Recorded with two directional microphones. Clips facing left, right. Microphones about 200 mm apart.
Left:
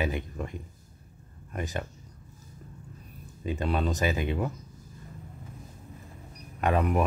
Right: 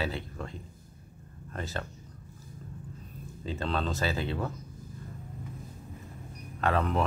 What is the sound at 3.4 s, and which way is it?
Speech, 15° left (ahead or behind).